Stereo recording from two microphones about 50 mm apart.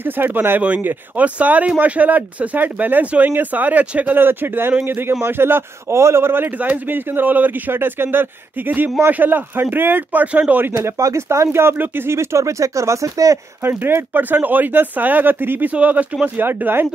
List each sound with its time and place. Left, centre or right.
0.0 s speech: right
0.6 s speech: right
4.1 s a man's voice: right
7.7 s a man's voice: right
10.2 s speech: right
10.8 s speech: right
11.7 s a man's voice: right
12.1 s speech: right
13.6 s speech: right
15.7 s speech: right
16.3 s a man's voice: right